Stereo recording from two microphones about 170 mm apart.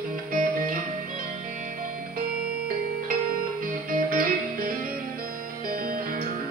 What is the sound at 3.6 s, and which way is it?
Music, 55° right (ahead or behind).